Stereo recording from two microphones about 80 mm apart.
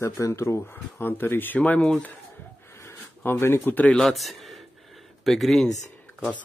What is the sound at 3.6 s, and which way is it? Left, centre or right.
Speech, centre.